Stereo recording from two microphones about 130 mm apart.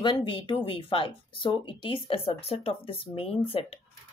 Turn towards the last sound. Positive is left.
turn(degrees=50)  # may be behind; listen again after turning